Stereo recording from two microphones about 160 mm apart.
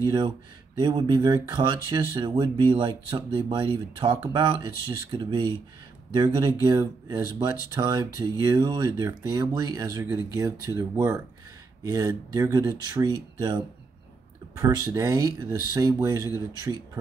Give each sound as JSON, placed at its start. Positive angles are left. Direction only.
{"t": 0.0, "sound": "speech", "side_deg": -30}
{"t": 14.9, "sound": "speech", "side_deg": -20}